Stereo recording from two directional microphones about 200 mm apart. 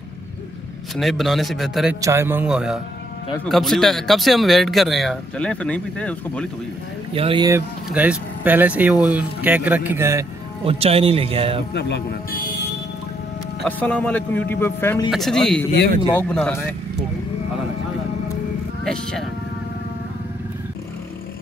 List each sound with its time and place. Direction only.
0.9 s speech: centre (ahead or behind)
2.0 s speech: 15° right (ahead or behind); by 6.5 s 5° left (ahead or behind)
7.2 s speech: 25° right (ahead or behind)
10.6 s speech: 30° right (ahead or behind)
11.7 s speech: 55° left (ahead or behind)
13.7 s speech: 5° left (ahead or behind)
15.0 s speech: centre (ahead or behind)